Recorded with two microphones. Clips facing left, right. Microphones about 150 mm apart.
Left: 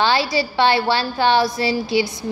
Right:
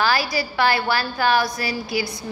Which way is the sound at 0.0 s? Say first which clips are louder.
Left 3 dB; 25° left (ahead or behind).